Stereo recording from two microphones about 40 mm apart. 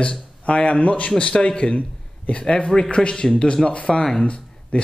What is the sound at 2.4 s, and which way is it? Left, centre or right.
Speech, left.